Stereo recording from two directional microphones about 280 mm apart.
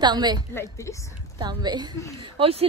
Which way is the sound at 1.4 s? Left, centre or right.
Centre.